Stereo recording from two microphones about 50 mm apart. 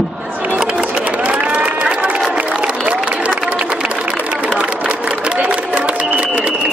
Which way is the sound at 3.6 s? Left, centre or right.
Right.